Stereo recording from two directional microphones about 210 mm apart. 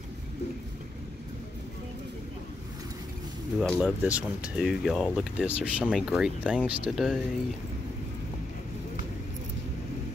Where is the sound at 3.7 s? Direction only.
5° right (ahead or behind).